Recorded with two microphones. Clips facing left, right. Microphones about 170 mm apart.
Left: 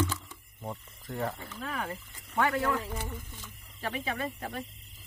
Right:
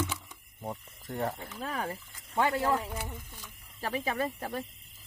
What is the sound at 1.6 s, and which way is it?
Speech, 35° right (ahead or behind).